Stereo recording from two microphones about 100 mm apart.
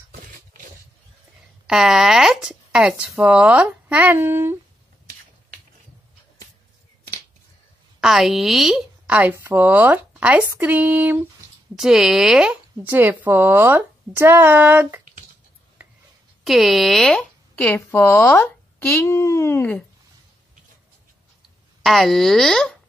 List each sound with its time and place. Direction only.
1.7 s speech: 5° right (ahead or behind); by 4.6 s 25° right (ahead or behind)
8.0 s speech: 5° right (ahead or behind)
9.0 s speech: 15° right (ahead or behind)
11.7 s speech: 5° right (ahead or behind)
12.8 s speech: 20° right (ahead or behind)
16.4 s speech: centre (ahead or behind)
17.9 s speech: 20° left (ahead or behind)
19.0 s speech: 30° left (ahead or behind)
21.8 s speech: centre (ahead or behind)